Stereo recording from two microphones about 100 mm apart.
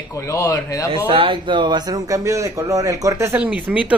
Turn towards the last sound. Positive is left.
turn(degrees=-15)  # may be behind; listen again after turning